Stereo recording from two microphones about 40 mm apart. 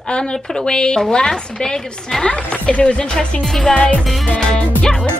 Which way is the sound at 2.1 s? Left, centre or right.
Centre.